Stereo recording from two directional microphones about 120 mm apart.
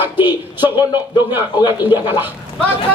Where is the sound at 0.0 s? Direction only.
15° right (ahead or behind).